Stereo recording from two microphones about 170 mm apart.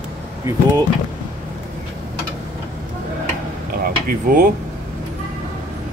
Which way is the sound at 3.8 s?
55° right (ahead or behind).